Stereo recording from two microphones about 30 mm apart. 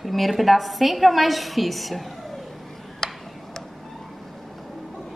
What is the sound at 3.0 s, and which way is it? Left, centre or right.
Tick-tock, centre.